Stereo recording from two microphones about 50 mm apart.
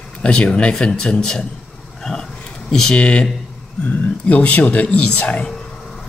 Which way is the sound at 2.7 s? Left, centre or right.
Centre.